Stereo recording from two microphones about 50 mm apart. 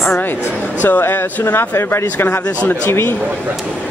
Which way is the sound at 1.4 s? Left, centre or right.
Left.